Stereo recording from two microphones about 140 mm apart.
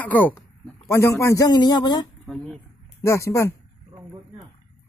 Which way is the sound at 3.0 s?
20° left (ahead or behind).